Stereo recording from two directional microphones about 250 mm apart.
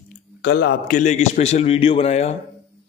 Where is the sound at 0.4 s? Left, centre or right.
Left.